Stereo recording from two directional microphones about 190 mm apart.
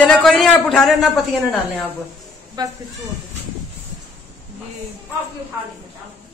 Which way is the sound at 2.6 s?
20° right (ahead or behind).